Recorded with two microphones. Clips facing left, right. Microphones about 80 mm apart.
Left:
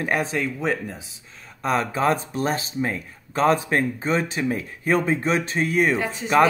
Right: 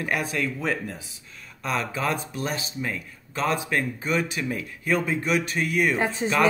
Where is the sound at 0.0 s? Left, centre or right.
Left.